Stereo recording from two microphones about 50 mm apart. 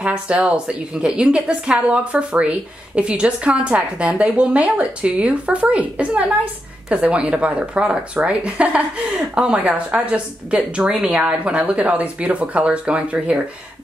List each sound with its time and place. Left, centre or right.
0.0 s a woman's voice: right